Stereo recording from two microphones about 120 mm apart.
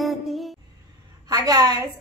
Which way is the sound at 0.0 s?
Centre (ahead or behind).